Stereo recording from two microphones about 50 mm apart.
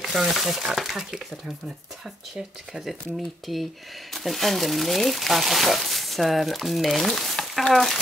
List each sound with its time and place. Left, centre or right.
0.0 s speech: centre